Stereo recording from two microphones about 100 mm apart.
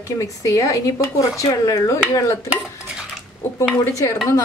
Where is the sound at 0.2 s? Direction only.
35° left (ahead or behind).